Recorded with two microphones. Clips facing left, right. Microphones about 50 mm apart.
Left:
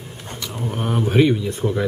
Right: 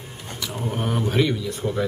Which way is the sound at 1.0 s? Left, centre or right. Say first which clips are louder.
Left 7 dB; left.